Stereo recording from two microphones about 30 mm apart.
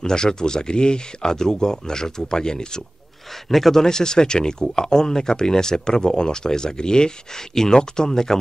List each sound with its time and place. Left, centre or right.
0.0 s speech: left
3.4 s speech: centre
3.8 s speech: left